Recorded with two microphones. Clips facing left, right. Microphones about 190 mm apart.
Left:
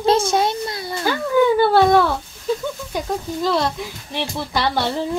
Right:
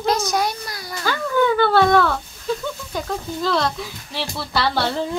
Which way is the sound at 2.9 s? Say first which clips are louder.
Left 2 dB; 15° left (ahead or behind).